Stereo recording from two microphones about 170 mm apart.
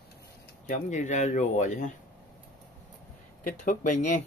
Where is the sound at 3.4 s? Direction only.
50° left (ahead or behind).